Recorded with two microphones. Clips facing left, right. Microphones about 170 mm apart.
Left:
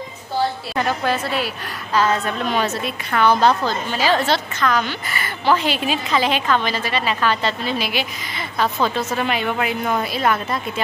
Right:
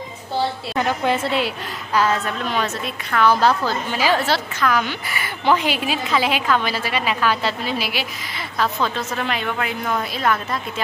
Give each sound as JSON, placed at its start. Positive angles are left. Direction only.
{"t": 0.7, "sound": "a woman's voice", "side_deg": -20}
{"t": 2.0, "sound": "a woman's voice", "side_deg": 0}